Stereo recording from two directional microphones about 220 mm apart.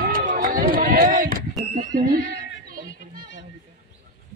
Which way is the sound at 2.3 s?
40° right (ahead or behind).